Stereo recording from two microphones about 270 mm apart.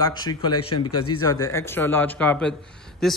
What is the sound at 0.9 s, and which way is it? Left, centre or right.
Speech, left.